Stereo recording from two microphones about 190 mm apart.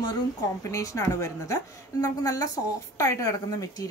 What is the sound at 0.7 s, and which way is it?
A woman's voice, 15° left (ahead or behind).